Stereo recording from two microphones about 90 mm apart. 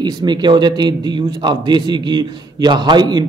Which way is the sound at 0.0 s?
55° right (ahead or behind).